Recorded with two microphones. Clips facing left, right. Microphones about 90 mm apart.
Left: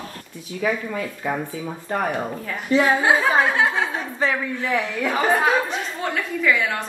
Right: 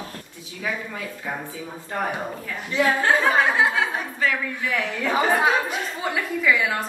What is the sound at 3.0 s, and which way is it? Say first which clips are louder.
Speech: left 1 dB; 5° left (ahead or behind).